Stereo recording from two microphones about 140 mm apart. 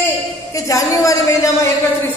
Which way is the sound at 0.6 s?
25° left (ahead or behind).